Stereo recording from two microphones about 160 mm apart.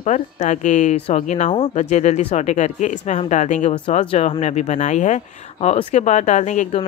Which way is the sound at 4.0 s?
35° left (ahead or behind).